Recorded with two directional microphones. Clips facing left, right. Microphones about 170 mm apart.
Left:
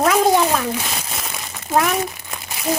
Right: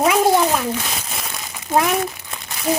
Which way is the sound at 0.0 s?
10° right (ahead or behind).